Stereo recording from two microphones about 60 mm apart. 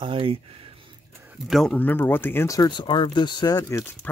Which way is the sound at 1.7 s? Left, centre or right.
Left.